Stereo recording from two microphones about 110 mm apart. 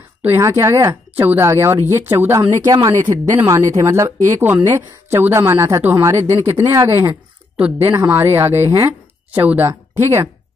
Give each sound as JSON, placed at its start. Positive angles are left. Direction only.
{"t": 0.4, "sound": "a woman's voice", "side_deg": -25}
{"t": 2.6, "sound": "a woman's voice", "side_deg": -35}
{"t": 9.3, "sound": "speech", "side_deg": -15}